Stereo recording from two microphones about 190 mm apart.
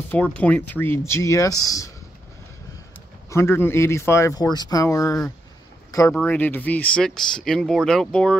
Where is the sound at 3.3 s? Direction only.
15° left (ahead or behind).